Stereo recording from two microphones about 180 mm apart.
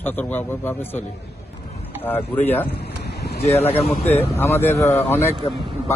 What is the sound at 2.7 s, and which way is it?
Vehicle, 65° left (ahead or behind).